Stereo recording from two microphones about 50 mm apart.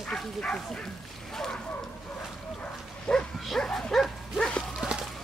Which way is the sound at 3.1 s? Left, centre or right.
Centre.